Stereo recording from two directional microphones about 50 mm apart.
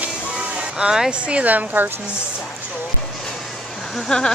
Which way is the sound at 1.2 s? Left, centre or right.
Right.